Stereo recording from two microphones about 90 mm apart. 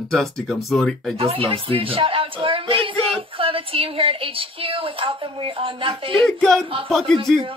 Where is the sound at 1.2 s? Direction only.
90° right.